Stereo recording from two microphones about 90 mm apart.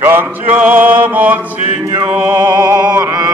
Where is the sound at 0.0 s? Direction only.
25° right (ahead or behind).